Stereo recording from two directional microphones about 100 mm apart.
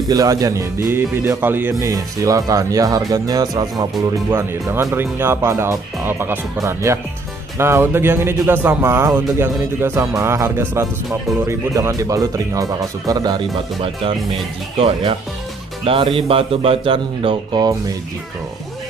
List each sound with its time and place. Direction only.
0.1 s speech: 40° right (ahead or behind); by 1.7 s 20° right (ahead or behind)
1.7 s speech: 35° right (ahead or behind)
4.3 s speech: 25° right (ahead or behind); by 13.4 s 40° right (ahead or behind)
15.8 s speech: 60° right (ahead or behind)